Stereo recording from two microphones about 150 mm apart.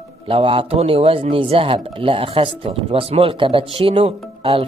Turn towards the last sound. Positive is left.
turn(degrees=-40)  # may be behind; listen again after turning